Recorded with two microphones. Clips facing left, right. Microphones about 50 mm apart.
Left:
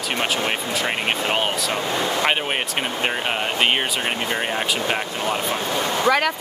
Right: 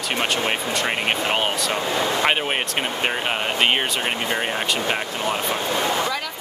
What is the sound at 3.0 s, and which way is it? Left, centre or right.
Speech, centre.